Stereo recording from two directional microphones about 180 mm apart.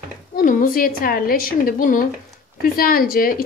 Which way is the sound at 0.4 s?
50° left (ahead or behind).